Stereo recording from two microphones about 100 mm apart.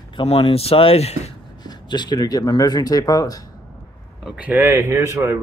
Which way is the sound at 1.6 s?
45° left (ahead or behind).